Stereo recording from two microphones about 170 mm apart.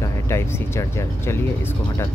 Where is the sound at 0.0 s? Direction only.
15° left (ahead or behind).